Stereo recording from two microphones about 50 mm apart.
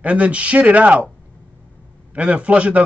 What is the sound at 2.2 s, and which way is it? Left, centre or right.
Speech, right.